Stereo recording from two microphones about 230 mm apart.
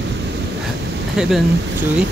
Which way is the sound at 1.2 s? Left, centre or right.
Centre.